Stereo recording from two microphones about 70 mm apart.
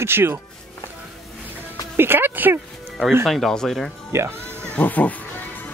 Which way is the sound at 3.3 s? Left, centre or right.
Centre.